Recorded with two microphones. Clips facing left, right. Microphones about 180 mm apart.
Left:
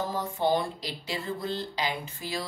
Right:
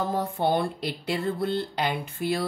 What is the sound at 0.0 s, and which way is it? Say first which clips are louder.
Speech: right 3 dB; 60° right (ahead or behind).